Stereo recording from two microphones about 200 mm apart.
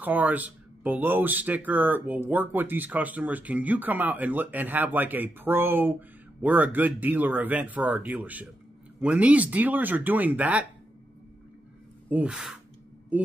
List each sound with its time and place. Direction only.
0.0 s speech: 10° right (ahead or behind)
12.1 s speech: 5° right (ahead or behind)